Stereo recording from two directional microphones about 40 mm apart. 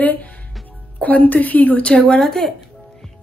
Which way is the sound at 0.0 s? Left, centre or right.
Left.